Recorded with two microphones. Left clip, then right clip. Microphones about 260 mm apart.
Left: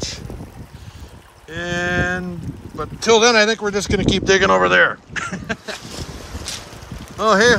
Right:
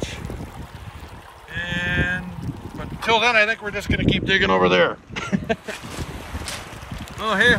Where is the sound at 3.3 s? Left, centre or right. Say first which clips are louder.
Left 3 dB; centre.